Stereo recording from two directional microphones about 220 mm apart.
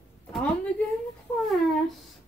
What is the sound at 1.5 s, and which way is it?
Speech, centre (ahead or behind).